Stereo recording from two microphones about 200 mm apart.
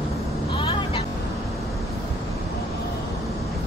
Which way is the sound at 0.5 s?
25° left (ahead or behind).